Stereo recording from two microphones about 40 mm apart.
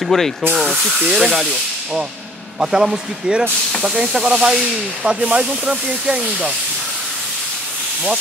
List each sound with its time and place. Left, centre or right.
0.0 s speech: centre
0.6 s speech: centre
2.6 s speech: centre